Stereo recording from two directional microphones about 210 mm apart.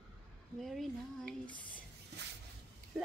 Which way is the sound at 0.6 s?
Centre (ahead or behind).